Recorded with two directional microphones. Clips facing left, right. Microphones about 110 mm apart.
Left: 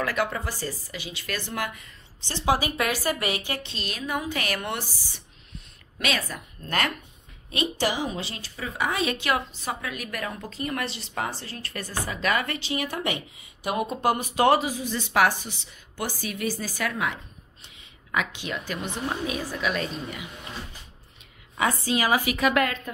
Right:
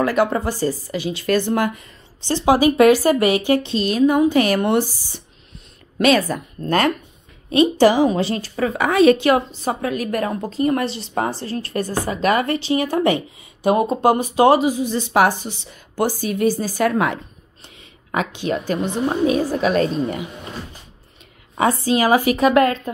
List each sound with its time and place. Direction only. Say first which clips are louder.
0.0 s a woman's voice: right 9 dB; 30° right (ahead or behind)
2.4 s a woman's voice: right 12 dB; 20° right (ahead or behind)
5.9 s a woman's voice: right 13 dB; 45° right (ahead or behind)
7.7 s a woman's voice: right 12 dB; 50° right (ahead or behind)
8.5 s a woman's voice: right 11 dB; 65° right (ahead or behind)
9.1 s a woman's voice: right 10 dB; 35° right (ahead or behind)
16.9 s a woman's voice: right 9 dB; 55° right (ahead or behind)
18.1 s a woman's voice: right 7 dB; 35° right (ahead or behind)
21.5 s a woman's voice: right 7 dB; 35° right (ahead or behind)